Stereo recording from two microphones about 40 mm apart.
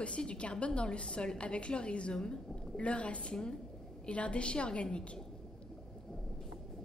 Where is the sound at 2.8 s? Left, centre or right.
Left.